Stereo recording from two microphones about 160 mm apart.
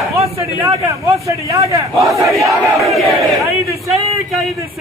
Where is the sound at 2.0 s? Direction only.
Centre (ahead or behind).